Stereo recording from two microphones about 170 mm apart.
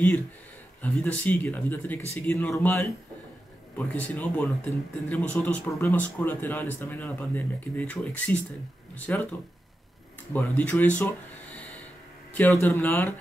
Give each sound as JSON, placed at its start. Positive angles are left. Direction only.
{"t": 0.8, "sound": "speech", "side_deg": 10}
{"t": 10.3, "sound": "speech", "side_deg": 10}